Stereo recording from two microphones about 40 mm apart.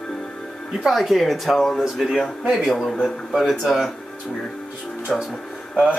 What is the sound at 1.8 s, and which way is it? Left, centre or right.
Speech, centre.